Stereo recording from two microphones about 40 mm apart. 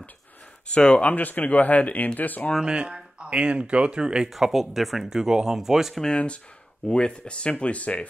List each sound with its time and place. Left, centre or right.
0.7 s speech: left
1.0 s speech: left
2.6 s speech: right
4.3 s speech: centre
6.1 s speech: left